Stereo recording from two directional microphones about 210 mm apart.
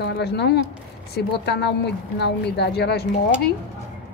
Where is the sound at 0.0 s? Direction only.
50° left (ahead or behind).